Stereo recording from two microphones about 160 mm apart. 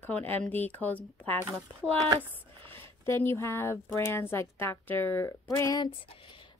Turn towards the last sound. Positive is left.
turn(degrees=25)  # may be behind; listen again after turning